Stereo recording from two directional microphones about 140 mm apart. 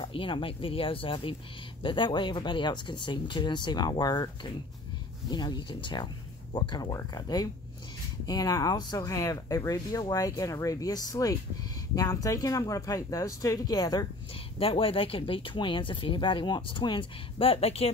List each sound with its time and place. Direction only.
0.0 s speech: 40° left (ahead or behind)
5.3 s speech: 30° left (ahead or behind)
14.6 s speech: 40° left (ahead or behind)